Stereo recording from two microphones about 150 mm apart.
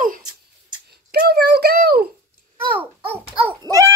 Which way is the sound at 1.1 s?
90° right.